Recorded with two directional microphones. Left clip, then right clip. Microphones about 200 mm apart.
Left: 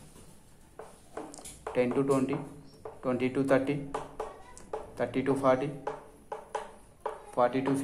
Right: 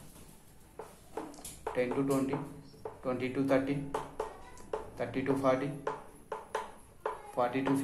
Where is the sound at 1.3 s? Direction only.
40° left (ahead or behind).